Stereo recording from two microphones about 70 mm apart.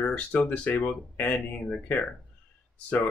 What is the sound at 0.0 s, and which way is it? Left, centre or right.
Speech, centre.